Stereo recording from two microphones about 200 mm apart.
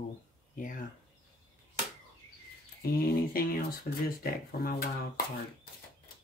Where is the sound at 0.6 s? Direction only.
45° left (ahead or behind).